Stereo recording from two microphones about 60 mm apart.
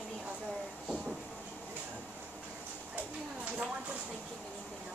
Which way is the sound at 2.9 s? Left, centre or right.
Right.